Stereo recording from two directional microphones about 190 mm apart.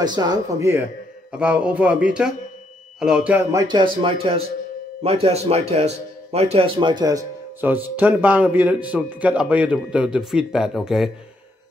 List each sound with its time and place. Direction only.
0.0 s speech: 20° right (ahead or behind)
3.6 s speech: 25° right (ahead or behind); by 11.1 s centre (ahead or behind)